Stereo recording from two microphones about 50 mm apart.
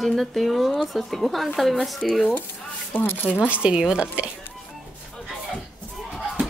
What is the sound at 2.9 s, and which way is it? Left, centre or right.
Speech, left.